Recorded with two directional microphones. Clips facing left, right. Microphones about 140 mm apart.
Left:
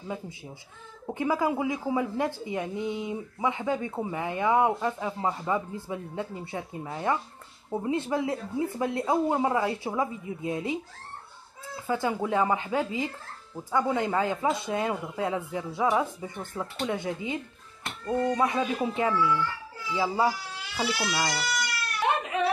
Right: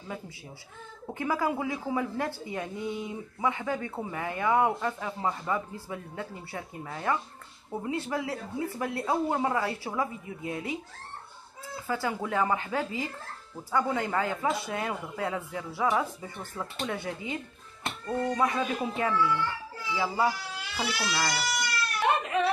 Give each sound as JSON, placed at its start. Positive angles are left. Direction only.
{"t": 1.0, "sound": "speech", "side_deg": 15}
{"t": 11.9, "sound": "speech", "side_deg": 20}